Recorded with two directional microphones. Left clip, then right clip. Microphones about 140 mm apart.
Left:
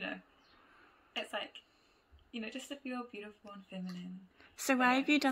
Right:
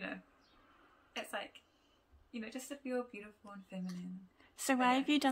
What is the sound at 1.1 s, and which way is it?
Speech, 20° right (ahead or behind).